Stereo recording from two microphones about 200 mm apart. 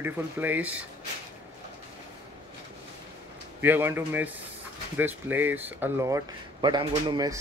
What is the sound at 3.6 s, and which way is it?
Speech, 10° right (ahead or behind).